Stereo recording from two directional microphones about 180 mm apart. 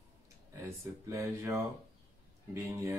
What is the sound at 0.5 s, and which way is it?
Speech, 15° right (ahead or behind).